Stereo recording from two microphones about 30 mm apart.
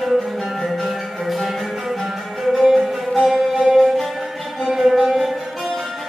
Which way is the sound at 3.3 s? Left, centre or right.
Right.